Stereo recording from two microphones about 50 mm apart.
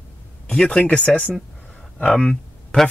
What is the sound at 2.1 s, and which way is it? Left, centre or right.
Speech, centre.